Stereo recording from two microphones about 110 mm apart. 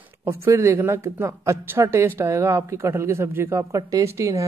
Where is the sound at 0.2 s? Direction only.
25° right (ahead or behind).